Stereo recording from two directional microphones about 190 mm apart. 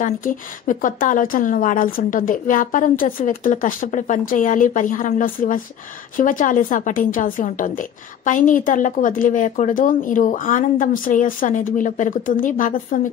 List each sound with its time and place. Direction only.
0.0 s a woman's voice: 45° left (ahead or behind)